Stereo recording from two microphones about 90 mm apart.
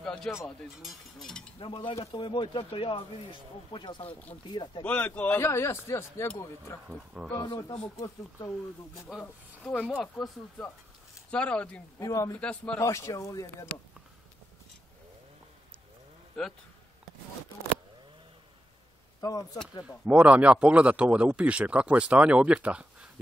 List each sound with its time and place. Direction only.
0.0 s speech: 10° left (ahead or behind)
1.6 s speech: 75° left (ahead or behind)
2.1 s speech: 65° left (ahead or behind)
3.7 s speech: 60° left (ahead or behind)
4.8 s speech: 15° left (ahead or behind)
5.4 s speech: 30° left (ahead or behind)
7.4 s speech: 55° left (ahead or behind)
9.6 s speech: 10° left (ahead or behind)
11.2 s speech: 10° left (ahead or behind)
12.0 s speech: 40° left (ahead or behind)
12.4 s speech: 15° left (ahead or behind)
12.7 s speech: 35° left (ahead or behind)
19.2 s speech: 45° left (ahead or behind)
20.1 s speech: 15° right (ahead or behind)